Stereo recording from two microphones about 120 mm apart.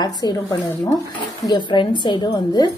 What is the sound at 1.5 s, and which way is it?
Speech, 40° left (ahead or behind).